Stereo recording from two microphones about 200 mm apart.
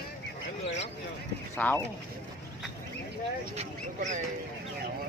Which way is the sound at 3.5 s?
35° right (ahead or behind).